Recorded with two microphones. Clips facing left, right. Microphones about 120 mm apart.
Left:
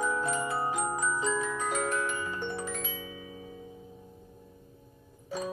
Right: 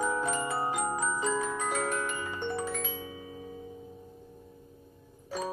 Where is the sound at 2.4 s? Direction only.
45° right (ahead or behind).